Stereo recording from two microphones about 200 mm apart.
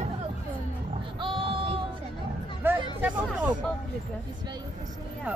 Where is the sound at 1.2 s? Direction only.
25° right (ahead or behind).